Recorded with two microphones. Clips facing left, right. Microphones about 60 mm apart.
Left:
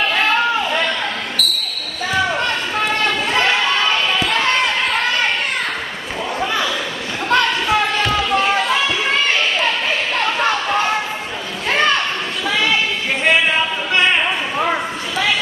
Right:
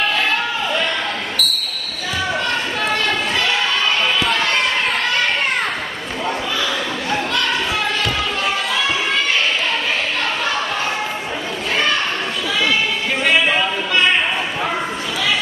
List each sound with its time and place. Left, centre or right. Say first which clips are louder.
1.4 s basketball bounce: left 1 dB; centre